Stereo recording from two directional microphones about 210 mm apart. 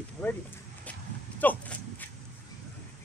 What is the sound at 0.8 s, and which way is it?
Dog, 5° left (ahead or behind).